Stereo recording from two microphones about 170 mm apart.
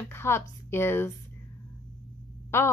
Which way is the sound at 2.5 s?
15° left (ahead or behind).